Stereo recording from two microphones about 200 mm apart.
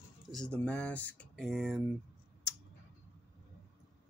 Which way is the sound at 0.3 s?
5° left (ahead or behind).